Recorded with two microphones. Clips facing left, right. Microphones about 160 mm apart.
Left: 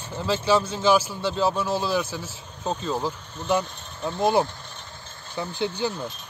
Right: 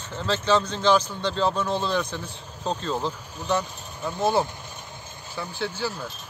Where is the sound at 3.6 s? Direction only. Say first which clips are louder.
Right 1 dB; 5° right (ahead or behind).